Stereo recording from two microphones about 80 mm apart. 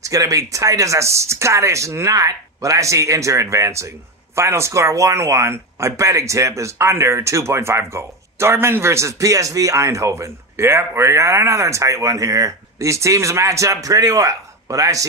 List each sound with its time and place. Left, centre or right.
0.0 s speech: right